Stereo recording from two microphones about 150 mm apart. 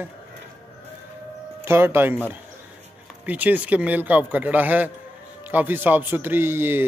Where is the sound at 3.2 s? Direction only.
10° right (ahead or behind).